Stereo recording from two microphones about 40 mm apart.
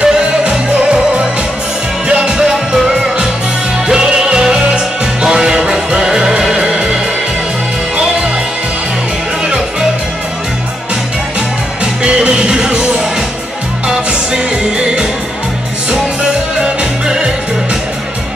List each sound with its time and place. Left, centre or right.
0.0 s music: right
2.0 s music: right
9.4 s music: right
11.8 s music: right
13.8 s music: centre
17.0 s music: right